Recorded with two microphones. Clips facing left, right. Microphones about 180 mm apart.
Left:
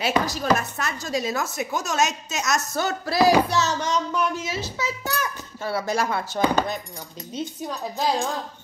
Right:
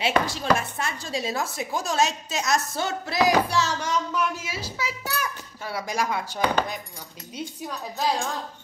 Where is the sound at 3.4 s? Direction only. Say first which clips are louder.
Left 2 dB; 10° right (ahead or behind).